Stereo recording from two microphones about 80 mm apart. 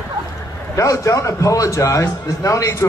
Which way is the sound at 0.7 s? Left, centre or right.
Left.